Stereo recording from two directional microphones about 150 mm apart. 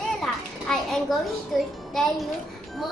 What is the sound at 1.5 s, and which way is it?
Speech, centre (ahead or behind).